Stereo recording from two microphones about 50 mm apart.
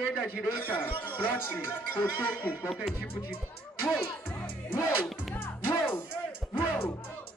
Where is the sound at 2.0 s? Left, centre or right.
Left.